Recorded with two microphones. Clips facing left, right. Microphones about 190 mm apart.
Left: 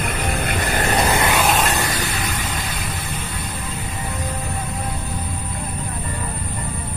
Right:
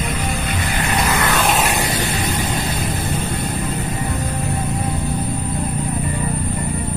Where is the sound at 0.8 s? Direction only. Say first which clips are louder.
Left 1 dB; 30° left (ahead or behind).